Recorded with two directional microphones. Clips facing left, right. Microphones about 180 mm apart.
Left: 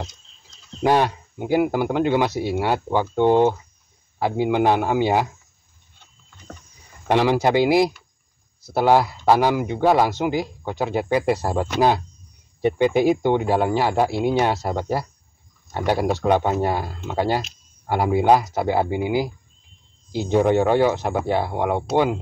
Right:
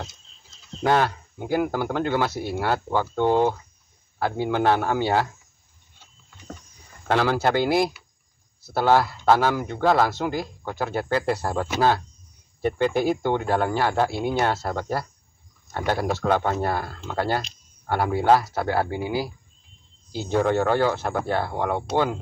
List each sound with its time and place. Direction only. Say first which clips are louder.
0.8 s speech: left 3 dB; 15° left (ahead or behind)
7.1 s speech: left 3 dB; 15° left (ahead or behind)
12.6 s speech: left 4 dB; 15° left (ahead or behind)
17.4 s a sound: left 3 dB; 5° left (ahead or behind)
17.9 s speech: left 2 dB; 15° left (ahead or behind)